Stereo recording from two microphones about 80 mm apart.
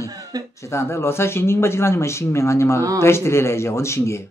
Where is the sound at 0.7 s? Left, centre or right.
Left.